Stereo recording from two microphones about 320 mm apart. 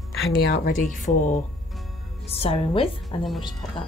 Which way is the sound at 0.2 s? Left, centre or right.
Left.